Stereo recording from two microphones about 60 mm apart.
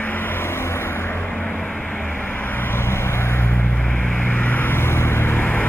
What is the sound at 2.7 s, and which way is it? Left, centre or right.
Vehicle, left.